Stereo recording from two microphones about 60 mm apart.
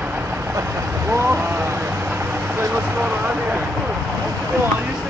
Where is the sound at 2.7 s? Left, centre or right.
Right.